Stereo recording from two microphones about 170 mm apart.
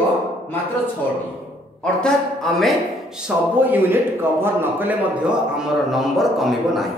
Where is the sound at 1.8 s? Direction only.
5° left (ahead or behind).